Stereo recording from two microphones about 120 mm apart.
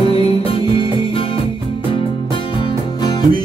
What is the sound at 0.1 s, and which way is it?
Music, 50° left (ahead or behind).